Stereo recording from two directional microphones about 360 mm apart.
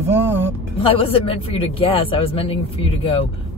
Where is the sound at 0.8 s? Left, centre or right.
Centre.